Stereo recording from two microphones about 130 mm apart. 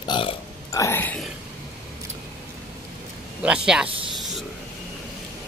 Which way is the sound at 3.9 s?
45° right (ahead or behind).